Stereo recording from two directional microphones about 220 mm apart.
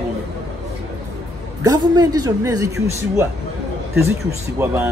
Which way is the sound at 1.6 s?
15° right (ahead or behind).